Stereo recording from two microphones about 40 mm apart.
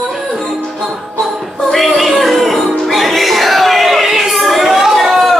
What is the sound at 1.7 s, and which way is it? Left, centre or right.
Music, centre.